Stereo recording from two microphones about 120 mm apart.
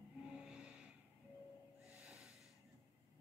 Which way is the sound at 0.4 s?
5° right (ahead or behind).